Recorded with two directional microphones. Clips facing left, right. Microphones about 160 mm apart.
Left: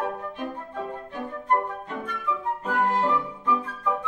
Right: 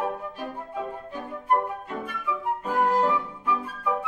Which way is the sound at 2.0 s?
10° right (ahead or behind).